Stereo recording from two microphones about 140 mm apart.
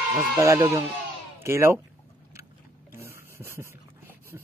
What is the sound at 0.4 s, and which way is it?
Speech, 20° right (ahead or behind).